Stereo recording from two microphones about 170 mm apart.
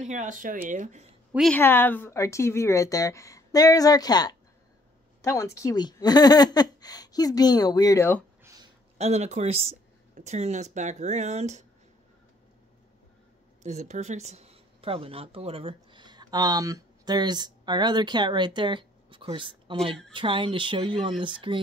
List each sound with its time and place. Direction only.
0.0 s speech: 45° right (ahead or behind)
1.5 s speech: 10° left (ahead or behind)
8.9 s speech: 40° right (ahead or behind)
13.6 s a woman's voice: 40° right (ahead or behind)